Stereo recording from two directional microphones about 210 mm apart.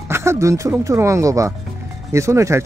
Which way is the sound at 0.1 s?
15° right (ahead or behind).